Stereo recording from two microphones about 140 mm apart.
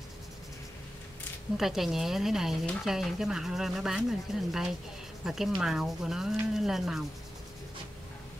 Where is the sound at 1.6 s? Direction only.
Centre (ahead or behind).